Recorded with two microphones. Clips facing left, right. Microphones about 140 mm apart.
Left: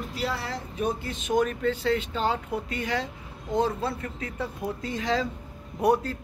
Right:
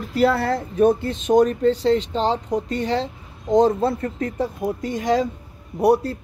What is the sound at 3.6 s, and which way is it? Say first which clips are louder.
Speech: right 9 dB; 40° right (ahead or behind).